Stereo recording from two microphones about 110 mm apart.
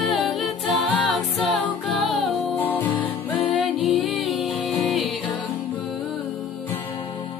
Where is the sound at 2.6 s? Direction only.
15° left (ahead or behind).